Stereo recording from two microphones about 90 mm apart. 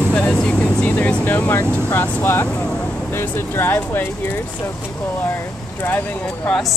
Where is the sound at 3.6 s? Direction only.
25° left (ahead or behind).